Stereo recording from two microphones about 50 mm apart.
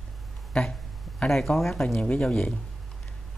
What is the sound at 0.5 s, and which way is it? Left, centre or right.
Speech, centre.